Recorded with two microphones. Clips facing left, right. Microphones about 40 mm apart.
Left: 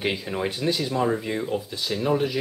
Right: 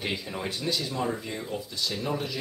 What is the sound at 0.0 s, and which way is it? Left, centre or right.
Speech, left.